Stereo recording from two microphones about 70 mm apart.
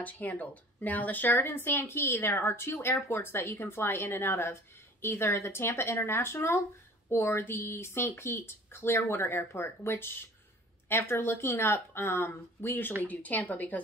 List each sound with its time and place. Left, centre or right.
0.0 s speech: left